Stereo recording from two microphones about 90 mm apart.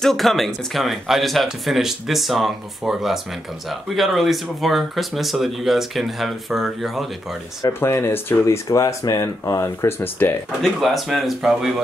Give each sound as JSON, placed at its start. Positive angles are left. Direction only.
{"t": 0.0, "sound": "speech", "side_deg": 5}
{"t": 7.6, "sound": "speech", "side_deg": 30}
{"t": 8.6, "sound": "speech", "side_deg": 40}
{"t": 9.9, "sound": "speech", "side_deg": 25}
{"t": 10.6, "sound": "speech", "side_deg": 0}